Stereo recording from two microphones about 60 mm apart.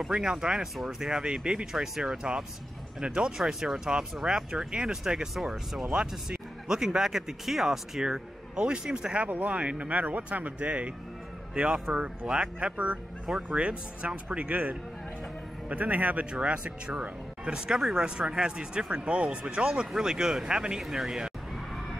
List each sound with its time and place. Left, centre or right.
0.0 s speech: centre
17.6 s speech: centre